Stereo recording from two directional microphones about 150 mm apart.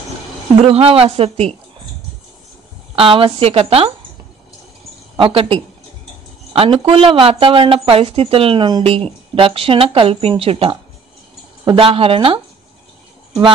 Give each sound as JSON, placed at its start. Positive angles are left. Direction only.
{"t": 0.7, "sound": "a woman's voice", "side_deg": -40}
{"t": 3.0, "sound": "a woman's voice", "side_deg": -35}
{"t": 5.1, "sound": "a woman's voice", "side_deg": -35}